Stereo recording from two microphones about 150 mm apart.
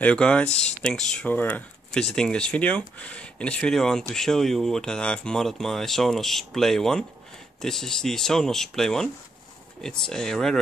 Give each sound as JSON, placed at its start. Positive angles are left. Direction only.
{"t": 0.0, "sound": "speech", "side_deg": 10}